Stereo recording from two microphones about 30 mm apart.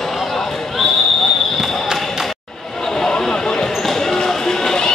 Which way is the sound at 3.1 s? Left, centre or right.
Left.